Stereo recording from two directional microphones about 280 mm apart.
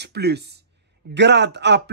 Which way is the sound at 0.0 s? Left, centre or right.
Right.